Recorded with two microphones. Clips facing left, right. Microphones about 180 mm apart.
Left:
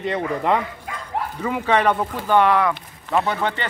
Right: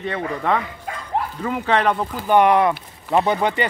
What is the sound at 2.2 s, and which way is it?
Speech, 15° right (ahead or behind).